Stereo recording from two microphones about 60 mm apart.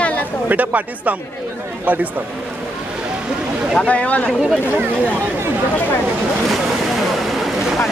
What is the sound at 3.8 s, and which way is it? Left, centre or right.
Speech, left.